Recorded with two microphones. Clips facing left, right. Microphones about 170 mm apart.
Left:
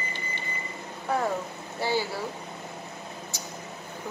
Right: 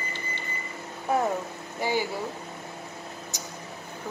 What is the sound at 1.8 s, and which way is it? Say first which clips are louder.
Air conditioning: even; 15° right (ahead or behind).